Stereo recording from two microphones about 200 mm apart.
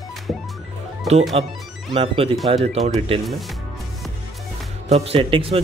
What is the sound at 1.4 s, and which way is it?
Speech, 30° right (ahead or behind).